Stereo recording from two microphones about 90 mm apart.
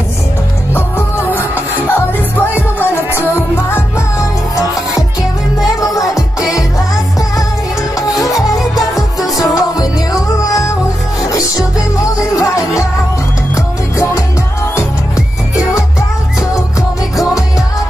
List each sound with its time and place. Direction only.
0.7 s music: 25° left (ahead or behind)
5.8 s music: 40° left (ahead or behind)
8.2 s music: 40° left (ahead or behind)
12.0 s music: 40° left (ahead or behind)
13.9 s music: 35° left (ahead or behind)